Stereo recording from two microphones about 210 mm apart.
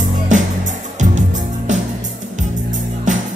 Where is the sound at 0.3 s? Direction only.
35° right (ahead or behind).